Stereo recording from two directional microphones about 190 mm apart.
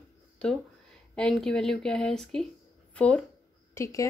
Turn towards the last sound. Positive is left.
turn(degrees=15)  # may be behind; listen again after turning